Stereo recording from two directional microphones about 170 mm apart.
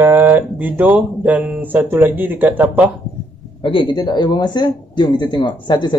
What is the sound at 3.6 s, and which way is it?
Speech, 30° left (ahead or behind).